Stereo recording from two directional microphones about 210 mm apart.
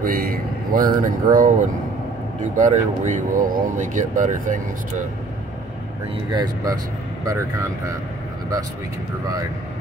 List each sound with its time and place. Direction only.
0.0 s speech: 40° right (ahead or behind)
2.5 s speech: 35° right (ahead or behind)
6.3 s speech: 15° right (ahead or behind)